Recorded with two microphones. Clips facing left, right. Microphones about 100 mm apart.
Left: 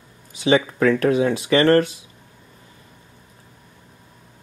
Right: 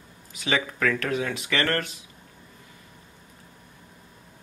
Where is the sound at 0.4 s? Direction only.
30° left (ahead or behind).